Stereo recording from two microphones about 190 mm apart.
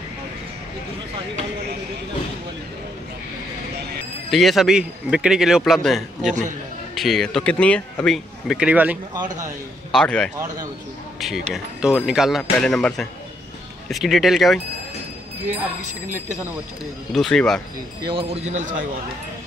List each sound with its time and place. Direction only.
4.3 s speech: centre (ahead or behind)
9.9 s speech: 5° left (ahead or behind)
10.3 s speech: 15° right (ahead or behind)
11.1 s speech: centre (ahead or behind)
15.8 s speech: 40° right (ahead or behind)
17.1 s speech: 5° left (ahead or behind)
18.0 s speech: 30° right (ahead or behind)